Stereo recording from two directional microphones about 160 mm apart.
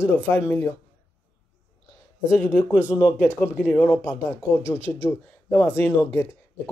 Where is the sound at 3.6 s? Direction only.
10° left (ahead or behind).